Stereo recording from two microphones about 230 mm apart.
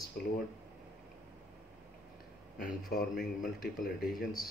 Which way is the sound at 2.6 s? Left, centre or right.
Left.